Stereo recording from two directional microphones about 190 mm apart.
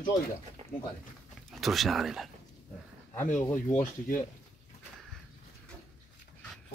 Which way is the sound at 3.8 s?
45° left (ahead or behind).